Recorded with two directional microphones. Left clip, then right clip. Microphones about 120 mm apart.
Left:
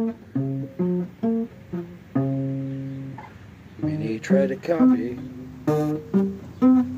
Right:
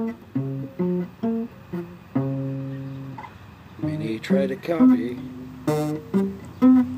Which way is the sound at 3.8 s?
Centre (ahead or behind).